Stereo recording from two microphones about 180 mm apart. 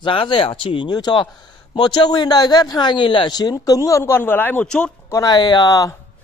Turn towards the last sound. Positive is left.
turn(degrees=20)  # may be behind; listen again after turning